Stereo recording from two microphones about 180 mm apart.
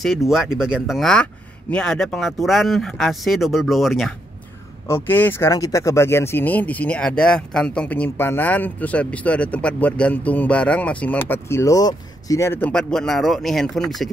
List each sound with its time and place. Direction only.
0.3 s speech: 5° right (ahead or behind)
4.8 s speech: 15° left (ahead or behind)